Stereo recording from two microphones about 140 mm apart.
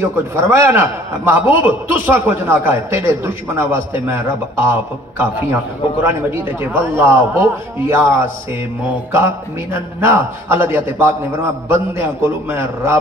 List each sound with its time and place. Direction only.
0.0 s a man's voice: 20° right (ahead or behind)
6.0 s a man's voice: 15° right (ahead or behind)
9.1 s a man's voice: 15° right (ahead or behind)